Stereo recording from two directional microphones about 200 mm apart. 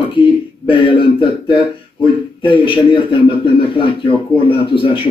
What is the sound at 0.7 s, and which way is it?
A man's voice, 25° left (ahead or behind).